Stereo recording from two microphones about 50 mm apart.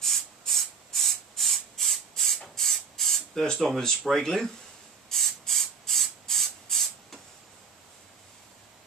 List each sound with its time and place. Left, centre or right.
0.0 s rub: centre
4.0 s speech: centre
5.1 s spray: centre